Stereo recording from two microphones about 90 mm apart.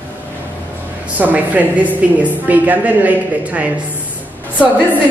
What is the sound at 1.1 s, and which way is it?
A woman's voice, 15° right (ahead or behind).